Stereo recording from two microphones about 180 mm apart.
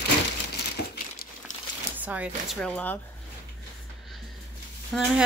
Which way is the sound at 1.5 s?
45° left (ahead or behind).